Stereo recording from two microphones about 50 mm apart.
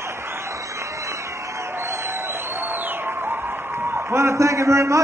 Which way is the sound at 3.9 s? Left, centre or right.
Right.